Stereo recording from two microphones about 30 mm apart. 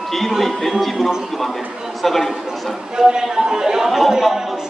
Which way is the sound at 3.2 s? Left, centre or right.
Right.